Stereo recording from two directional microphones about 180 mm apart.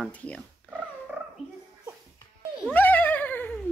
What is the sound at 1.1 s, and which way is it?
Dog, 5° right (ahead or behind).